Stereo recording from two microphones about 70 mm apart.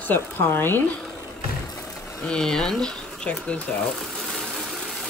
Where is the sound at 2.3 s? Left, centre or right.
Centre.